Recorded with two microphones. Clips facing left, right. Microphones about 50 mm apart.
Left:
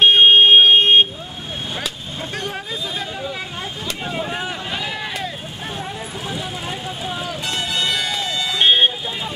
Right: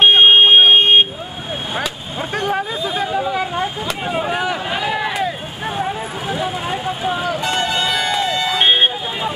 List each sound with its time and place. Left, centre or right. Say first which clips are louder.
0.0 s vehicle: right 1 dB; centre
2.3 s hubbub: right 9 dB; right
4.1 s vehicle: right 7 dB; right
7.4 s music: right 2 dB; centre